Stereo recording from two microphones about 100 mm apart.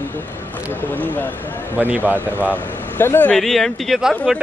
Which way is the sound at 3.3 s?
5° left (ahead or behind).